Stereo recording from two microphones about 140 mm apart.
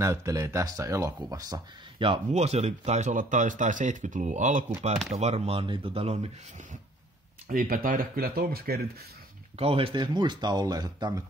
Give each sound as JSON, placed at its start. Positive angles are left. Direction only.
{"t": 0.0, "sound": "speech", "side_deg": -20}
{"t": 2.3, "sound": "speech", "side_deg": -50}
{"t": 5.1, "sound": "speech", "side_deg": -50}
{"t": 7.4, "sound": "speech", "side_deg": -85}
{"t": 9.6, "sound": "speech", "side_deg": -45}